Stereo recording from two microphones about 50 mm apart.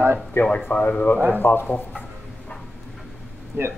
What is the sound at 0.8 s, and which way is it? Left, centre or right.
Speech, left.